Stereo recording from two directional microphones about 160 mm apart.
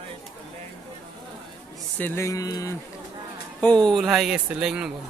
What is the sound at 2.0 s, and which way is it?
Speech, 15° left (ahead or behind).